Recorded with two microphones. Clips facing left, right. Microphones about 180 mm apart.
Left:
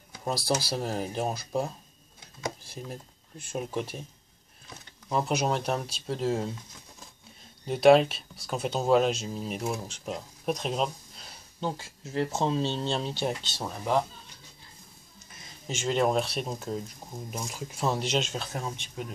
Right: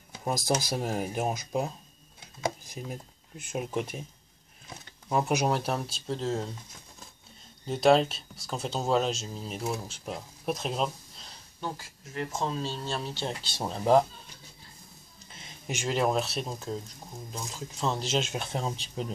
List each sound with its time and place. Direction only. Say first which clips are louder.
0.2 s speech: even; 15° right (ahead or behind)
2.6 s a sound: right 1 dB; 15° right (ahead or behind)
3.5 s speech: right 1 dB; 15° right (ahead or behind)
5.1 s speech: right 1 dB; 10° right (ahead or behind); by 6.5 s 5° left (ahead or behind)
7.6 s speech: left 3 dB; 5° left (ahead or behind)
11.6 s speech: left 4 dB; 25° left (ahead or behind)
13.4 s speech: right 2 dB; 10° right (ahead or behind)
13.7 s speech: right 6 dB; 25° right (ahead or behind)
15.6 s speech: left 2 dB; 10° right (ahead or behind); by 18.0 s 10° left (ahead or behind)
18.3 s speech: right 2 dB; 25° right (ahead or behind)